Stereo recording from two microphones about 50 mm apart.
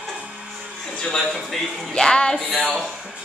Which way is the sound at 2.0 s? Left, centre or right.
Centre.